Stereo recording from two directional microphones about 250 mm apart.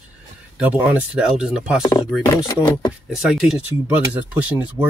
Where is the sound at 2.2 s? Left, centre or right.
Centre.